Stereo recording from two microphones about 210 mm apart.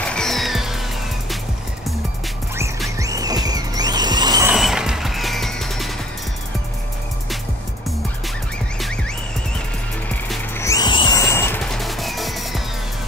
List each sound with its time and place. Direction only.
0.0 s music: 5° left (ahead or behind)
3.0 s music: 15° right (ahead or behind)
4.5 s music: centre (ahead or behind)
10.0 s music: 10° left (ahead or behind)